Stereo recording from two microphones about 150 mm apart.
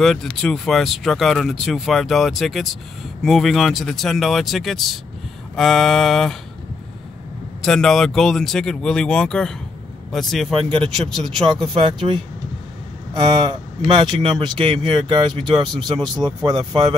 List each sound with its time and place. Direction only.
0.0 s speech: 5° left (ahead or behind)
7.6 s speech: 5° left (ahead or behind)
11.7 s speech: 35° right (ahead or behind)